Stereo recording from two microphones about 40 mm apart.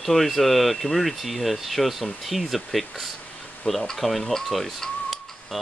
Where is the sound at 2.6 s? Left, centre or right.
Centre.